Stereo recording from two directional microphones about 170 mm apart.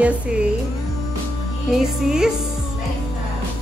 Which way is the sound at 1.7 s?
5° right (ahead or behind).